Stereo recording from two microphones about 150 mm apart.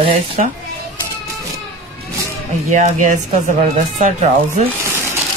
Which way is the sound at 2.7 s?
55° right (ahead or behind).